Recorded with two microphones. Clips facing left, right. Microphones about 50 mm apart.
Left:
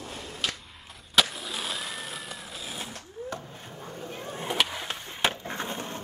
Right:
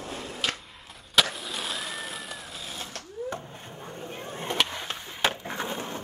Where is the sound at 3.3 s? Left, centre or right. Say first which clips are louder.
Right 1 dB; right.